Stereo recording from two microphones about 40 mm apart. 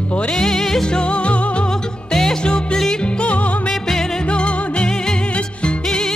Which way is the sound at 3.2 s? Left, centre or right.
Left.